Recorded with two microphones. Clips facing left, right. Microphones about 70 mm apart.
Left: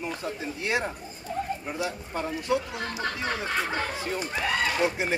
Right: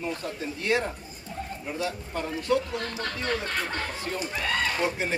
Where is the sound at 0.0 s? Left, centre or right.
Centre.